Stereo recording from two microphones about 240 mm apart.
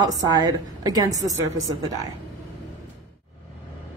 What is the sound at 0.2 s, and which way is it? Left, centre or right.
A woman's voice, centre.